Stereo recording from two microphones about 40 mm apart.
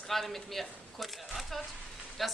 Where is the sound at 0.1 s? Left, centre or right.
Centre.